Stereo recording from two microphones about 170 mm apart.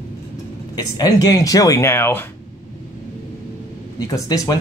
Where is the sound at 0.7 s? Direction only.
20° left (ahead or behind).